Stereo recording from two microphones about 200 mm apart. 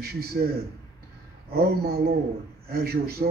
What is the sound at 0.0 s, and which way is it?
Speech, 50° right (ahead or behind).